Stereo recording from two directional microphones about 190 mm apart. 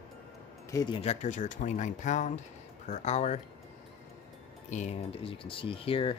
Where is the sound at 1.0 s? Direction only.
35° left (ahead or behind).